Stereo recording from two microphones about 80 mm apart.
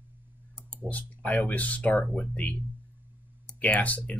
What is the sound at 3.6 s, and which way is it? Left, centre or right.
Speech, centre.